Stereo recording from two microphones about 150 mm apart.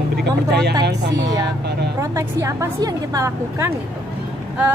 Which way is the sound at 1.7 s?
90° right.